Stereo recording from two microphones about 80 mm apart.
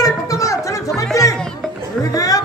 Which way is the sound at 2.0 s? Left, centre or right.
Left.